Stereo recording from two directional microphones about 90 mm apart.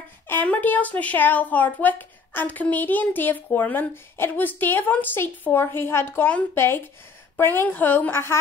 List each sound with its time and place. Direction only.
0.3 s speech: 20° left (ahead or behind)